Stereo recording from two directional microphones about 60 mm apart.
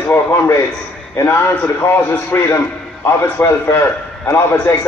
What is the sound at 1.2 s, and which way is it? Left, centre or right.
A man's voice, left.